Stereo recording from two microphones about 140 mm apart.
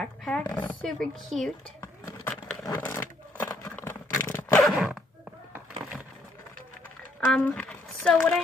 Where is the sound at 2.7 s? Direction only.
15° left (ahead or behind).